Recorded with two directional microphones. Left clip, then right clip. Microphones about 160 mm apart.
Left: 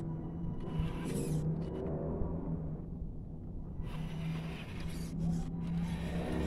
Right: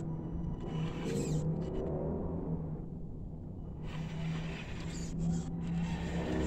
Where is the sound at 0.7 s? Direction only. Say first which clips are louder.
Right 2 dB; 20° left (ahead or behind).